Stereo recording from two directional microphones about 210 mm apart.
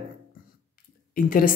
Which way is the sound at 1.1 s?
40° left (ahead or behind).